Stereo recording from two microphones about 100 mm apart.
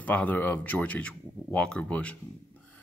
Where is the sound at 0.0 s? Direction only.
15° left (ahead or behind).